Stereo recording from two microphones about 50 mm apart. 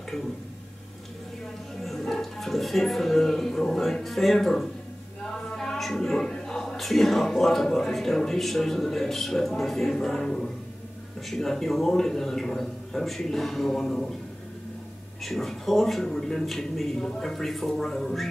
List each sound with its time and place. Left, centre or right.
1.8 s speech: centre
5.3 s a sound: centre
7.6 s a man's voice: centre
15.2 s a man's voice: centre